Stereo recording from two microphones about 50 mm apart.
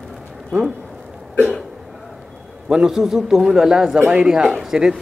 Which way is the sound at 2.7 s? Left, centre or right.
Centre.